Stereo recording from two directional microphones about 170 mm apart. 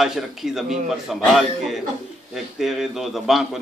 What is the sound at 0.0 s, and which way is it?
A man's voice, 5° right (ahead or behind).